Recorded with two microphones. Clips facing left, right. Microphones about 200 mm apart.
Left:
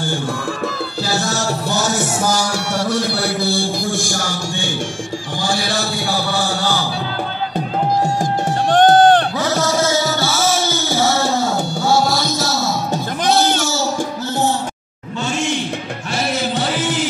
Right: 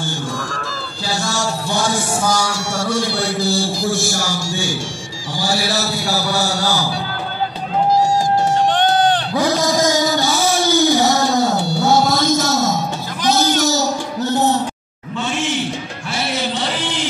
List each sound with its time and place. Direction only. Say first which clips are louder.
2.5 s a man's voice: left 1 dB; 60° left (ahead or behind)
3.4 s music: right 1 dB; centre (ahead or behind)
5.4 s a man's voice: right 2 dB; 5° right (ahead or behind)
8.7 s a sound: left 5 dB; 50° left (ahead or behind)
9.4 s music: right 1 dB; 15° right (ahead or behind)
12.3 s a sound: right 3 dB; 45° right (ahead or behind)
15.3 s music: left 1 dB; centre (ahead or behind)